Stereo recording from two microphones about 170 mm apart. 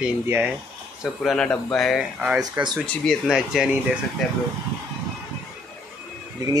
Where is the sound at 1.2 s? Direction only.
5° left (ahead or behind).